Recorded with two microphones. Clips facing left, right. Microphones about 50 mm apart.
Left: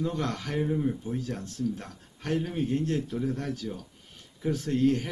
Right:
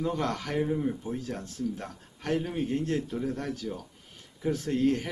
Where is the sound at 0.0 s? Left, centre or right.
Centre.